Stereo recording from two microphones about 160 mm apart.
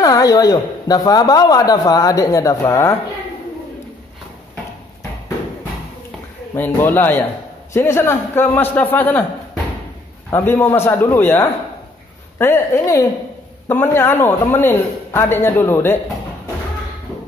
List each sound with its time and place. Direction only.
0.0 s speech: 20° left (ahead or behind)
6.5 s a man's voice: 10° left (ahead or behind)
10.3 s a man's voice: 15° left (ahead or behind)